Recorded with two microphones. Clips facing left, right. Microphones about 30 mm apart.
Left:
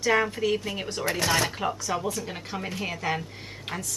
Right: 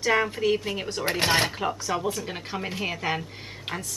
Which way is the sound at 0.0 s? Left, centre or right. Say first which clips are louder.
Right 1 dB; centre.